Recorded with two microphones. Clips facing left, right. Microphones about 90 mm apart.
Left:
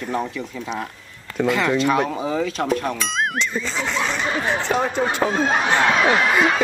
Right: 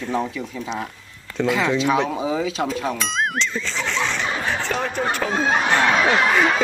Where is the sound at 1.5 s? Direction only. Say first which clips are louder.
Even; centre (ahead or behind).